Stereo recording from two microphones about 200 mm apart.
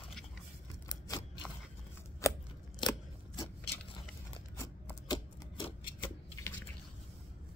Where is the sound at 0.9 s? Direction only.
20° left (ahead or behind).